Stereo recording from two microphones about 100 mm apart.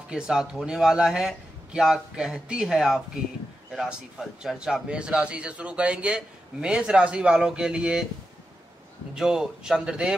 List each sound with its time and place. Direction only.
0.1 s a man's voice: 5° right (ahead or behind)
9.1 s a man's voice: 5° right (ahead or behind)